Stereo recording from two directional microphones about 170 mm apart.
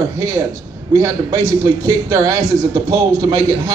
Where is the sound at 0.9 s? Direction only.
20° right (ahead or behind).